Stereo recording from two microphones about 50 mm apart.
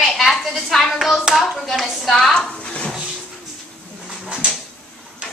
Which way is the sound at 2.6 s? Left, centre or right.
Left.